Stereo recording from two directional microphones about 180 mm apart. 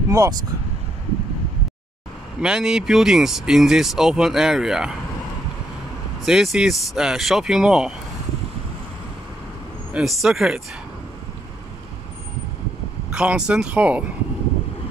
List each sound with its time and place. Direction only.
0.1 s speech: 20° right (ahead or behind)
2.4 s speech: 5° right (ahead or behind)
6.2 s speech: centre (ahead or behind)
9.9 s speech: centre (ahead or behind)
13.1 s speech: 5° right (ahead or behind)